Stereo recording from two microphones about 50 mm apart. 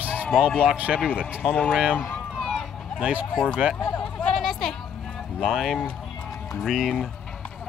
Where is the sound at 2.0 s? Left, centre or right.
Left.